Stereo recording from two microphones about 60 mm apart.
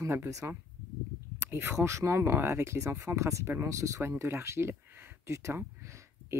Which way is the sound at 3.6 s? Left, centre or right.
Right.